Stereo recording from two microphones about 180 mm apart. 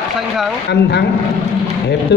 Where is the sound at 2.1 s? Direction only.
70° left (ahead or behind).